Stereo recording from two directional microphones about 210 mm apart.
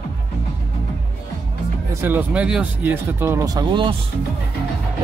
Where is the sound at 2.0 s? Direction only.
10° right (ahead or behind).